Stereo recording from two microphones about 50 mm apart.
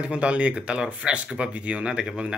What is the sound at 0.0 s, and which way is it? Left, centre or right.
Speech, right.